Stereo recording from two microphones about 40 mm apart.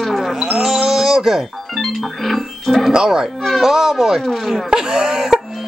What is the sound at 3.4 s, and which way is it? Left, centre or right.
Speech, centre.